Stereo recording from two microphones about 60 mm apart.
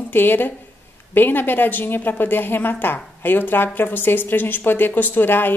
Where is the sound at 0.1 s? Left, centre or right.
Left.